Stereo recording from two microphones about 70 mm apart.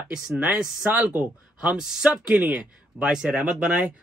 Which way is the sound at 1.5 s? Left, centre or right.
Centre.